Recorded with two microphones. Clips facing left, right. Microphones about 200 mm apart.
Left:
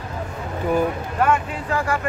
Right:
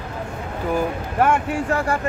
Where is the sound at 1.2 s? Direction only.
45° right (ahead or behind).